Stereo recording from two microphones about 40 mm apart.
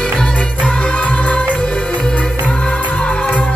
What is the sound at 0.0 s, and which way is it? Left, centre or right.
Music, left.